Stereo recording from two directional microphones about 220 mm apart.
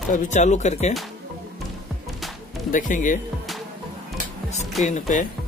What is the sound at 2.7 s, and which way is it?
Speech, 35° left (ahead or behind).